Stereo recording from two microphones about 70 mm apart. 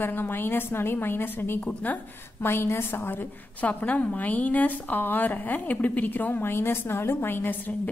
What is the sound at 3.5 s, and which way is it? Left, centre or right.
A woman's voice, left.